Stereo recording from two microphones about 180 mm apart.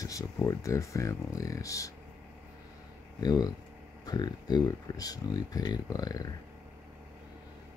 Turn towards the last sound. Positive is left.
turn(degrees=20)  # may be behind; listen again after turning